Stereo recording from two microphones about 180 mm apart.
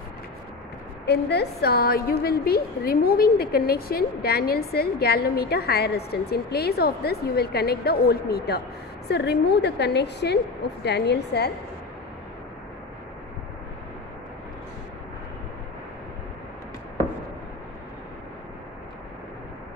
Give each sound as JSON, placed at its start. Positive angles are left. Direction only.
{"t": 1.0, "sound": "a woman's voice", "side_deg": 65}